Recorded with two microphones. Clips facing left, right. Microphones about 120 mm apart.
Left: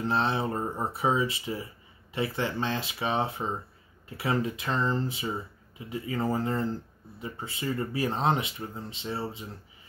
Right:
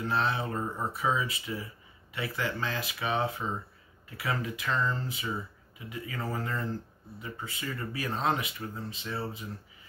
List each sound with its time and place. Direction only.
0.0 s speech: 30° left (ahead or behind)